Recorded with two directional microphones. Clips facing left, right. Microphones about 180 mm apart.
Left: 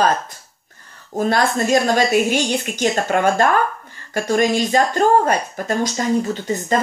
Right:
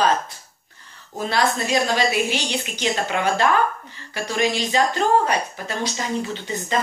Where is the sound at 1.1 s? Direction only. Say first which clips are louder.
Left 4 dB; 45° left (ahead or behind).